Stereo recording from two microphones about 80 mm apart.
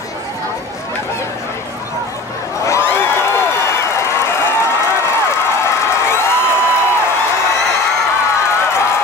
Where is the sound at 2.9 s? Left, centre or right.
Left.